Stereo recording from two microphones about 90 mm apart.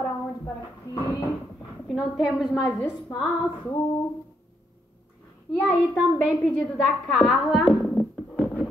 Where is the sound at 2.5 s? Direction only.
40° left (ahead or behind).